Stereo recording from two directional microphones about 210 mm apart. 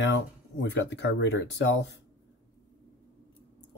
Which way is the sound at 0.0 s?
60° left (ahead or behind).